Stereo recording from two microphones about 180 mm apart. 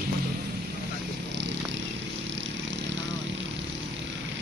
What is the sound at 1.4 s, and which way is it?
Vehicle, 75° right (ahead or behind).